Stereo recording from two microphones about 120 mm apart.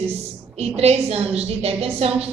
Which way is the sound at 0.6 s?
60° right (ahead or behind).